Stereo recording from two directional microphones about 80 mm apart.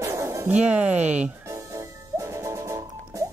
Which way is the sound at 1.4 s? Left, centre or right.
Right.